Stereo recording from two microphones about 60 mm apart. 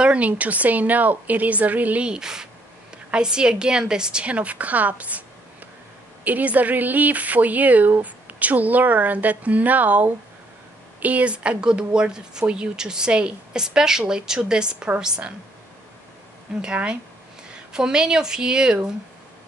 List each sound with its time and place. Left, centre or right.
0.0 s a sound: centre
0.3 s speech: right
2.0 s speech: centre
6.2 s speech: right
16.6 s speech: centre